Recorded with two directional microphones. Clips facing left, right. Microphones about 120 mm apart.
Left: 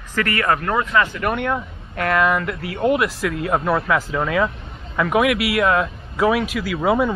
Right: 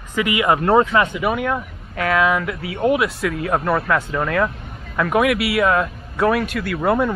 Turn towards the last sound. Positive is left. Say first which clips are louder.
# even
turn(degrees=0)  # may be behind; listen again after turning